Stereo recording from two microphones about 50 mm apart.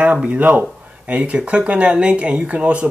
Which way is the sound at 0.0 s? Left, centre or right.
Right.